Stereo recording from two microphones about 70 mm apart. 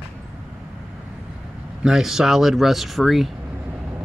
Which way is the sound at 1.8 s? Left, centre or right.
Centre.